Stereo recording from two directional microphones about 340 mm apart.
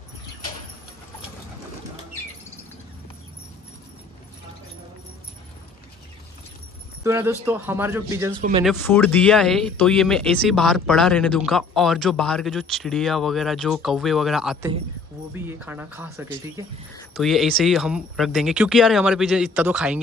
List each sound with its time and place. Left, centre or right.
7.0 s speech: centre
8.4 s speech: centre
8.6 s speech: centre